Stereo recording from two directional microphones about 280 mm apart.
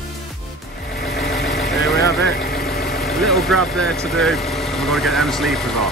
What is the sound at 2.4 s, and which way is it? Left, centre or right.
Vehicle, left.